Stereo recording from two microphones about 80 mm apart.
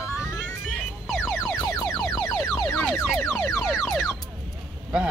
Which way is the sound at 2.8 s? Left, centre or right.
Centre.